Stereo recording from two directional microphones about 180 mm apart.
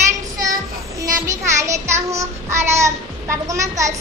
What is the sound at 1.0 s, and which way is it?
Child singing, 15° right (ahead or behind).